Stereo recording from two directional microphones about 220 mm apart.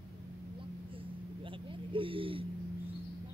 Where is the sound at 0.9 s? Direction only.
25° right (ahead or behind).